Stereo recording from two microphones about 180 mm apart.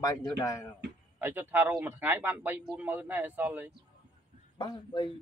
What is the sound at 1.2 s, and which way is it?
A man's voice, 10° right (ahead or behind).